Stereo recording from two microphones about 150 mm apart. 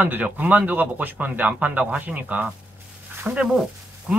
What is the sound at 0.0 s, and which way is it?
Speech, 10° right (ahead or behind).